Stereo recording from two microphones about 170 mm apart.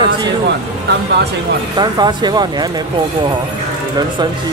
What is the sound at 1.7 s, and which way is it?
Speech, 25° right (ahead or behind).